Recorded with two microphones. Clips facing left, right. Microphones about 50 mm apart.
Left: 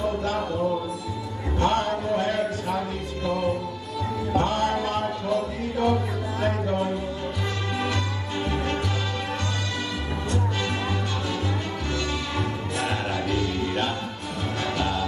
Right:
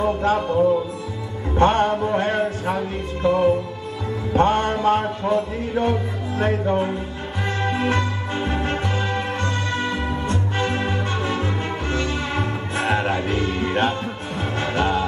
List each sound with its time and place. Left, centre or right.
0.0 s music: right
1.6 s music: right